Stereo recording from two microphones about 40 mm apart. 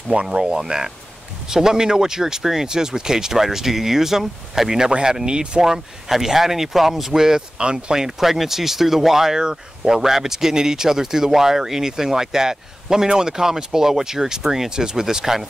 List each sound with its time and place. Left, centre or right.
0.1 s speech: right
5.6 s speech: centre